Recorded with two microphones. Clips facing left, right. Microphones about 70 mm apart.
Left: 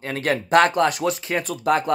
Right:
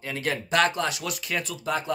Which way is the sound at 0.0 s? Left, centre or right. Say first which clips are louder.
Left 6 dB; left.